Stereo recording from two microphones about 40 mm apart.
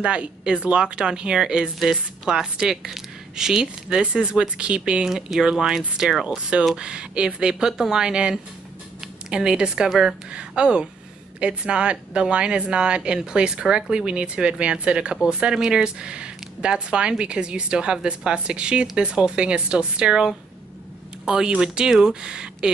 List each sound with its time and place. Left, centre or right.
0.0 s a woman's voice: right
1.6 s speech: centre
4.0 s a woman's voice: right; by 6.2 s centre
6.8 s a woman's voice: right
21.5 s a woman's voice: centre